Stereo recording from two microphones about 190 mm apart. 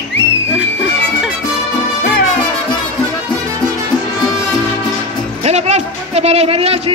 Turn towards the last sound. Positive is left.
turn(degrees=-30)  # may be behind; listen again after turning